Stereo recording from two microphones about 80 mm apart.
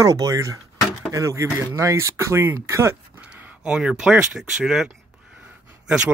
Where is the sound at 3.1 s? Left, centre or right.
Centre.